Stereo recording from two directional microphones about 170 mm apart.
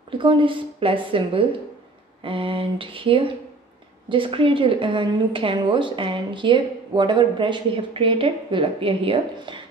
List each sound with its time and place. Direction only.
0.2 s a woman's voice: 30° right (ahead or behind)
2.2 s a sound: 30° right (ahead or behind)
4.1 s a woman's voice: 30° right (ahead or behind)